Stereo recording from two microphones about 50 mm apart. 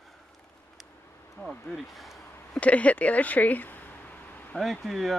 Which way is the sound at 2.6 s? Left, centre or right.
Left.